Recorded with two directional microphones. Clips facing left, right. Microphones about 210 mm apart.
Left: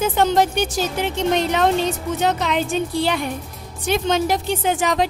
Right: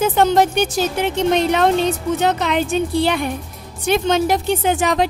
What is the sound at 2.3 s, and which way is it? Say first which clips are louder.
Speech: right 3 dB; 60° right (ahead or behind).